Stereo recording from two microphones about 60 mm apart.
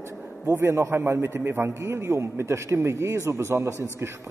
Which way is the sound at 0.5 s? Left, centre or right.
Right.